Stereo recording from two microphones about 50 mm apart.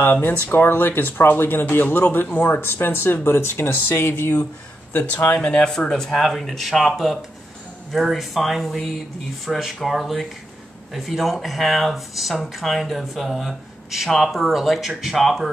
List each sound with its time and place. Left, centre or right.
0.0 s speech: left
4.9 s speech: left
5.4 s speech: left
5.7 s speech: centre